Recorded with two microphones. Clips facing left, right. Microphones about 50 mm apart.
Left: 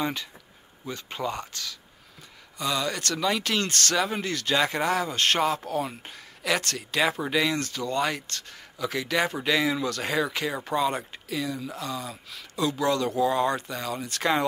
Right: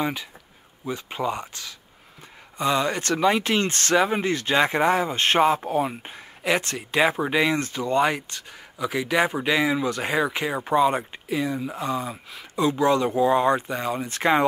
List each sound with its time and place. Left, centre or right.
0.0 s speech: centre